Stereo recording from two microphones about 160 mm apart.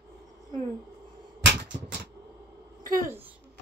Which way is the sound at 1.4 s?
90° right.